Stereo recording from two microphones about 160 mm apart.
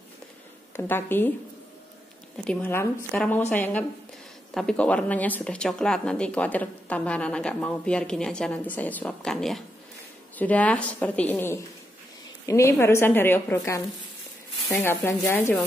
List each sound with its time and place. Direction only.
0.7 s speech: 15° left (ahead or behind)
2.3 s a woman's voice: 5° left (ahead or behind)